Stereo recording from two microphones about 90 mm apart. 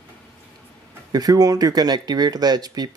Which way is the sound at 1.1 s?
45° right (ahead or behind).